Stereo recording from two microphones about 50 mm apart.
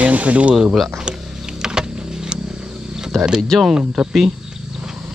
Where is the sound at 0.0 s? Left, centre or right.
Right.